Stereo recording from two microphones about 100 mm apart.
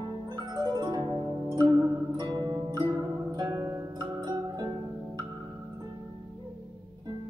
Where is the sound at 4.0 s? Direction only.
45° right (ahead or behind).